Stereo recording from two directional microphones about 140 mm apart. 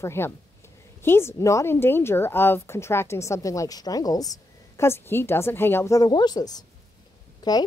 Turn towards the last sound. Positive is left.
turn(degrees=30)  # may be behind; listen again after turning